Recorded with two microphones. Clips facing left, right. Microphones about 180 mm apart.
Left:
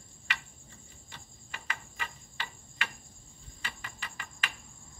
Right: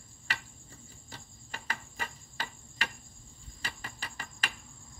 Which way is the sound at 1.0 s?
40° right (ahead or behind).